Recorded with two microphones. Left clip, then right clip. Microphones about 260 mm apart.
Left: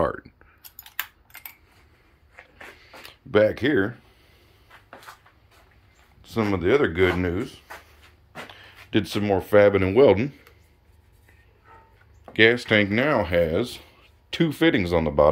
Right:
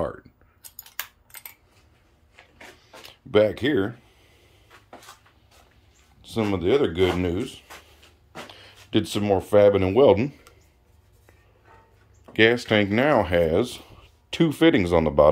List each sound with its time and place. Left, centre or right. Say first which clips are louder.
0.7 s a sound: left 3 dB; centre
3.1 s speech: even; centre
6.2 s speech: left 1 dB; centre
12.3 s speech: left 1 dB; centre